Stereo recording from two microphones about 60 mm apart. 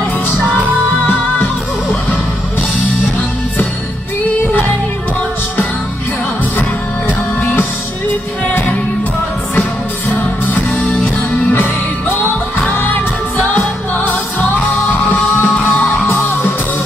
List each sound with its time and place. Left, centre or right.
1.0 s music: left
7.1 s music: left
11.3 s music: left